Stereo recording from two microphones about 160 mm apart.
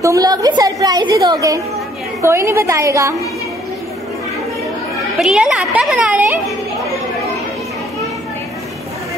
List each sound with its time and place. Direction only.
0.0 s a woman's voice: 20° right (ahead or behind)
5.2 s a child's voice: 5° right (ahead or behind)